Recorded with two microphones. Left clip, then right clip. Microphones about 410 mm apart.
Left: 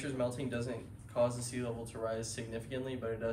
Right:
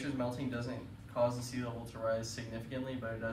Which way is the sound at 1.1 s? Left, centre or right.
Centre.